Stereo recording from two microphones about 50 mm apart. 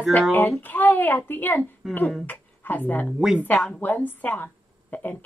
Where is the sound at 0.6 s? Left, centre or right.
Left.